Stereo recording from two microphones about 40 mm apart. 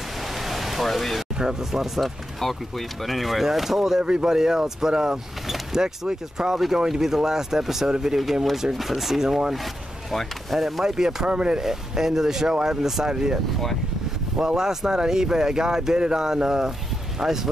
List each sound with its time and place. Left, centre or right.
0.4 s pink noise: centre
1.4 s speech: centre
3.1 s speech: centre
4.0 s speech: centre
8.2 s speech: centre
11.2 s speech: right
11.6 s speech: centre
14.4 s speech: centre